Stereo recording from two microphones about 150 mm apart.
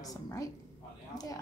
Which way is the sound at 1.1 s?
25° left (ahead or behind).